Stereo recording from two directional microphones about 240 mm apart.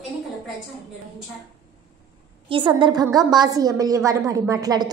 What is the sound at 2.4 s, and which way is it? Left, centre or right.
A woman's voice, centre.